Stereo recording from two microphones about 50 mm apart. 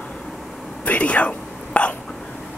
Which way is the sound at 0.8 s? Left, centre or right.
Left.